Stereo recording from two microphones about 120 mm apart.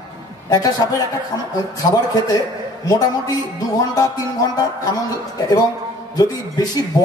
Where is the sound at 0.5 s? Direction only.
30° left (ahead or behind).